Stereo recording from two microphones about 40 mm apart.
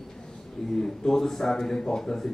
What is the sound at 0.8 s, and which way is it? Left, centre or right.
A man's voice, centre.